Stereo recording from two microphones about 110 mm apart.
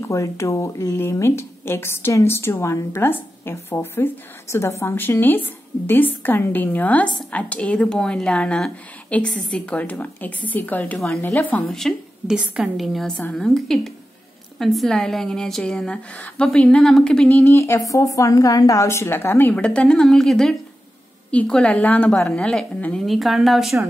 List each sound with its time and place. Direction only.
0.0 s a woman's voice: 25° left (ahead or behind)
11.7 s a woman's voice: centre (ahead or behind)
12.4 s a woman's voice: 10° right (ahead or behind)
12.7 s a woman's voice: centre (ahead or behind)
17.4 s a woman's voice: 25° left (ahead or behind)
19.5 s a woman's voice: 10° left (ahead or behind)
23.0 s a woman's voice: centre (ahead or behind)